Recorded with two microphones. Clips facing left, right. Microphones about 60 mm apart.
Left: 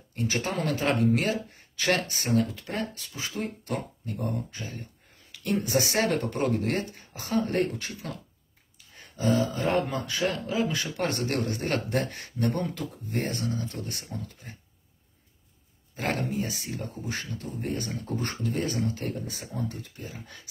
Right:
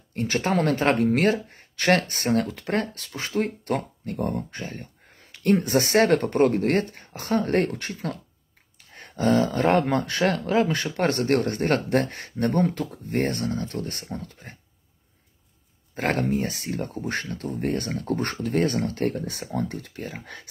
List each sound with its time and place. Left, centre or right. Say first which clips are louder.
0.1 s speech: right 5 dB; right
10.6 s speech: right 5 dB; right
15.9 s speech: right 5 dB; right